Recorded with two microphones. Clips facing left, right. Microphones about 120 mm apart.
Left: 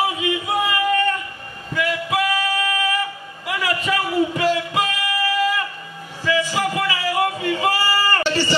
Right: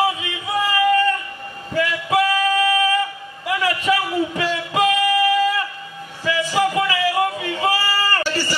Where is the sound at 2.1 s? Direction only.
30° right (ahead or behind).